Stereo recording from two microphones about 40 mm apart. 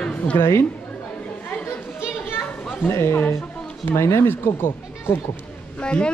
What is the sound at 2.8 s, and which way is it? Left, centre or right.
Speech, left.